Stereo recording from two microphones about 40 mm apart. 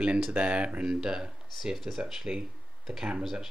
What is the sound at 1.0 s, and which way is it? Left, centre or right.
Speech, centre.